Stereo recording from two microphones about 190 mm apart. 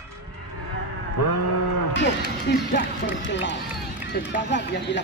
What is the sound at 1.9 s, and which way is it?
Music, 60° left (ahead or behind).